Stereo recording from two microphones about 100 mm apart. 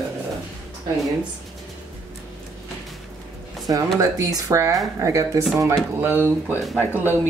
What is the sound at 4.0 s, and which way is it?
Speech, 35° right (ahead or behind).